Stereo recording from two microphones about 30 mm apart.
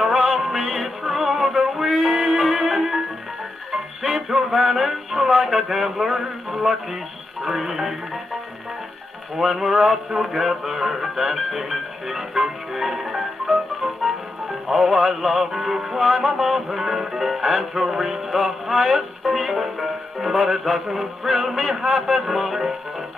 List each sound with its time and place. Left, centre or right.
0.0 s music: centre
2.0 s music: centre
9.4 s music: centre